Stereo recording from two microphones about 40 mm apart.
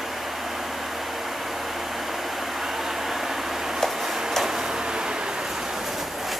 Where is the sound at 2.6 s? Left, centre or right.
Centre.